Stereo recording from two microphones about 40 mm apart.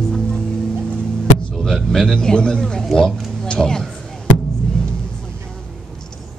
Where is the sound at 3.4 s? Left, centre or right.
Centre.